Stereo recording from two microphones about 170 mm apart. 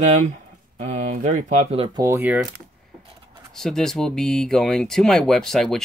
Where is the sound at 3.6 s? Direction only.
5° left (ahead or behind).